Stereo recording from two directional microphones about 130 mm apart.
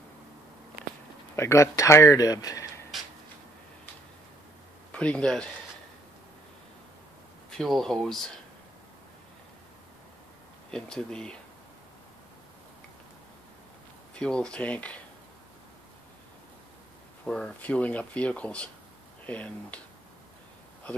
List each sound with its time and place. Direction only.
1.3 s speech: 20° left (ahead or behind)
4.9 s speech: 10° left (ahead or behind)
7.5 s speech: centre (ahead or behind)
10.7 s speech: 5° left (ahead or behind)
14.1 s speech: 5° left (ahead or behind)
17.2 s speech: 10° left (ahead or behind)